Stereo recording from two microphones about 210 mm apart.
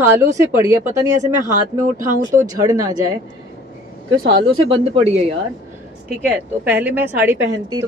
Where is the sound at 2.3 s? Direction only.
15° right (ahead or behind).